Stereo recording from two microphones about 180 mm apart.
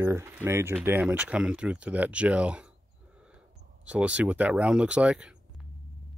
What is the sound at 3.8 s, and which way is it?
Speech, 5° right (ahead or behind).